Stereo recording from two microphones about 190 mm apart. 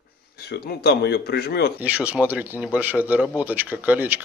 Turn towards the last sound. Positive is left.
turn(degrees=-10)  # may be behind; listen again after turning